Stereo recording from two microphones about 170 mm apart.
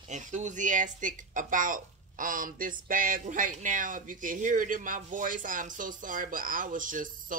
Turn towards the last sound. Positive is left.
turn(degrees=-50)  # may be behind; listen again after turning